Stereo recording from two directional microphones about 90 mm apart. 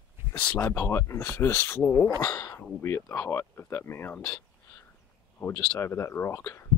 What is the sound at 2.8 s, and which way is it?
Speech, 25° left (ahead or behind).